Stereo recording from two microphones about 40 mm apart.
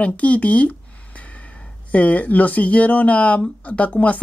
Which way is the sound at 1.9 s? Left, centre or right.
Left.